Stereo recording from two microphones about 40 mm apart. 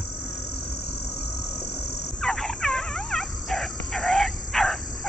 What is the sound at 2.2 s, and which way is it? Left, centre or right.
Dog, centre.